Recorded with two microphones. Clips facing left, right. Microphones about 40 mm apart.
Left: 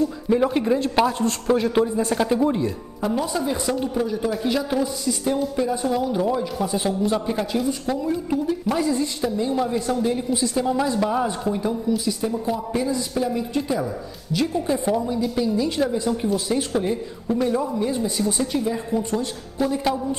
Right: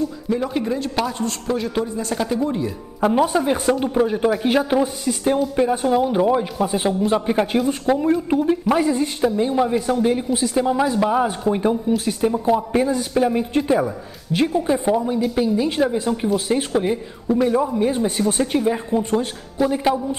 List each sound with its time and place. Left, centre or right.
0.3 s a man's voice: centre
3.1 s speech: right
8.6 s speech: right
11.9 s speech: right
14.5 s a woman's voice: centre
17.4 s a woman's voice: centre
17.7 s speech: right